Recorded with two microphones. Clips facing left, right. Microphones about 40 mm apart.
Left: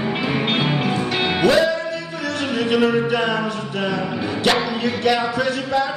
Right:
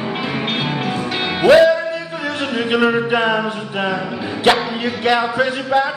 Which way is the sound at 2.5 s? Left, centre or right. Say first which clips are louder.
Right 1 dB; centre.